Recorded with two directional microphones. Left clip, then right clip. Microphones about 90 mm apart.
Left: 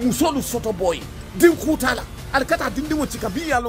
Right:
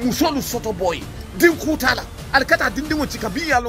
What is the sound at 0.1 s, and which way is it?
Speech, 35° left (ahead or behind).